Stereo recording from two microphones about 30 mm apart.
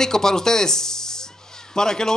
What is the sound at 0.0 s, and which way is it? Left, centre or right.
A man's voice, centre.